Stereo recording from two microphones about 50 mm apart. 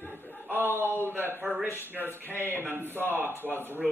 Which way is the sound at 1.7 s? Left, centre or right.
Left.